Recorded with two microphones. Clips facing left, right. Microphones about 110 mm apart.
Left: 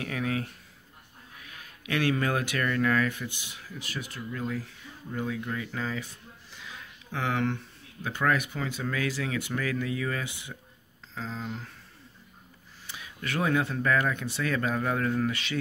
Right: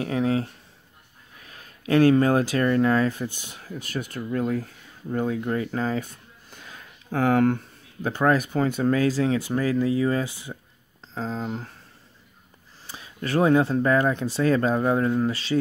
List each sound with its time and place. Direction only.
0.0 s speech: 30° right (ahead or behind)
12.8 s speech: 35° right (ahead or behind)